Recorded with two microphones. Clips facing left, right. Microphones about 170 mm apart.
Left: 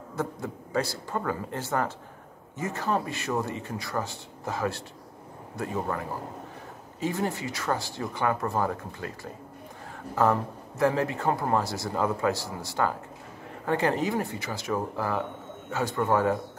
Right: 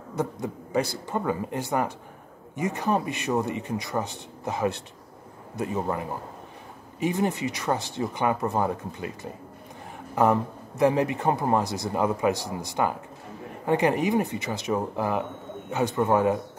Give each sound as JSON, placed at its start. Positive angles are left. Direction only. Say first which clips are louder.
{"t": 0.1, "sound": "a man's voice", "louder": "right 3 dB", "side_deg": -15}